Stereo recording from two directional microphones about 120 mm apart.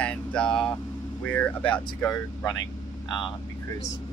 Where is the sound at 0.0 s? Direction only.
10° left (ahead or behind).